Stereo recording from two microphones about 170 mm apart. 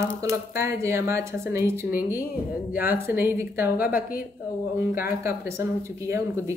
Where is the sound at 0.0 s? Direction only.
15° right (ahead or behind).